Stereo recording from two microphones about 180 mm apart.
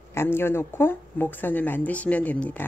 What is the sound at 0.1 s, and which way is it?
Speech, 15° left (ahead or behind).